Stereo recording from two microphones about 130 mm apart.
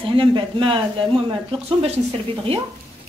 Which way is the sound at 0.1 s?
40° right (ahead or behind).